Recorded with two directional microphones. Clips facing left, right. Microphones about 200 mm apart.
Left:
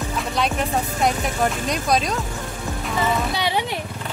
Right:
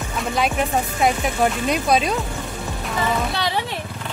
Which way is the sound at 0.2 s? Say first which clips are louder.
Right 3 dB; centre (ahead or behind).